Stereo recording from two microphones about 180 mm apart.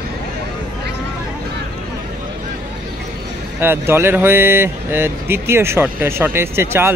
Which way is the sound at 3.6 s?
15° right (ahead or behind).